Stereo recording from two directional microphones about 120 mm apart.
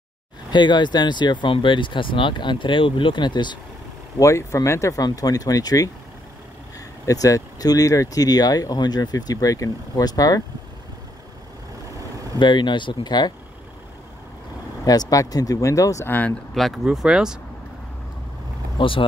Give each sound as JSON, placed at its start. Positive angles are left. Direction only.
{"t": 0.5, "sound": "speech", "side_deg": 40}
{"t": 4.2, "sound": "speech", "side_deg": 25}
{"t": 7.1, "sound": "speech", "side_deg": 30}
{"t": 12.4, "sound": "speech", "side_deg": 40}
{"t": 14.9, "sound": "speech", "side_deg": 30}
{"t": 16.5, "sound": "speech", "side_deg": 0}
{"t": 18.8, "sound": "speech", "side_deg": 45}